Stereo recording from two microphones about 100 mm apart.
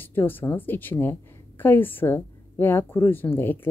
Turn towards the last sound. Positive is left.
turn(degrees=20)  # may be behind; listen again after turning